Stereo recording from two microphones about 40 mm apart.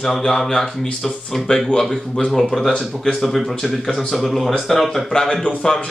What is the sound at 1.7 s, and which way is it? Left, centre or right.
Speech, centre.